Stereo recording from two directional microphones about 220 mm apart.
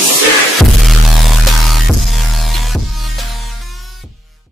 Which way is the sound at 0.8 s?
Centre (ahead or behind).